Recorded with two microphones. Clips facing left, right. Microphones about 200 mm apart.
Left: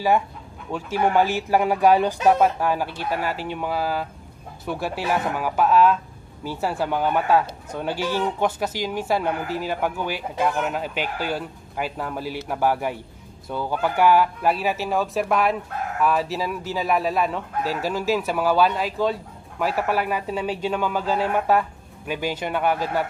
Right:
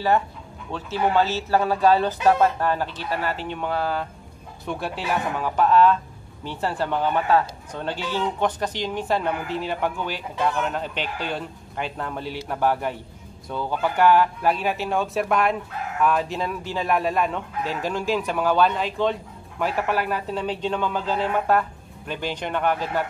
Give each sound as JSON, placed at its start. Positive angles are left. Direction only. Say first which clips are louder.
{"t": 0.7, "sound": "speech", "louder": "left 1 dB", "side_deg": 10}